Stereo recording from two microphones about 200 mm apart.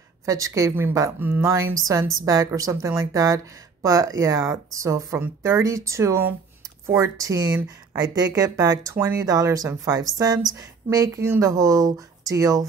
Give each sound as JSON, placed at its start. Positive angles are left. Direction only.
{"t": 0.2, "sound": "speech", "side_deg": -15}